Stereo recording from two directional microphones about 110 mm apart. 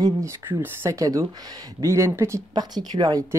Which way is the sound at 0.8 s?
30° right (ahead or behind).